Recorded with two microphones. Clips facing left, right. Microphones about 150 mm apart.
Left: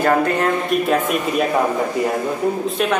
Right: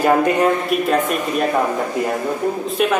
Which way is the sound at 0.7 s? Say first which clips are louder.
Even; centre (ahead or behind).